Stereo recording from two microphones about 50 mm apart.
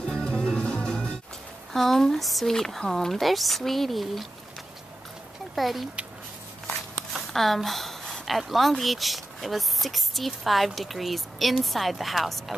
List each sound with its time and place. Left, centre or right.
0.0 s music: centre
1.7 s speech: centre
5.6 s speech: centre
7.3 s speech: centre